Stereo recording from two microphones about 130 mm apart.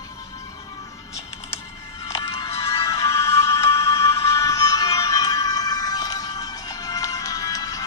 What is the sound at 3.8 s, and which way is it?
Music, 25° left (ahead or behind).